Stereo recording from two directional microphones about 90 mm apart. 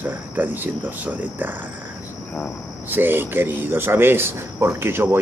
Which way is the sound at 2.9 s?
20° right (ahead or behind).